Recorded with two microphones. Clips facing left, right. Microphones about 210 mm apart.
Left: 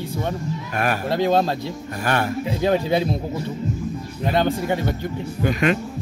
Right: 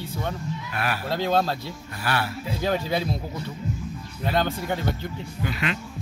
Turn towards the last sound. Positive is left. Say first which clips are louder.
# left 9 dB
turn(degrees=45)  # may be behind; listen again after turning